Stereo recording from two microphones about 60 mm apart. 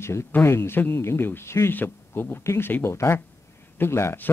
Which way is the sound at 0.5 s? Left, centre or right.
Left.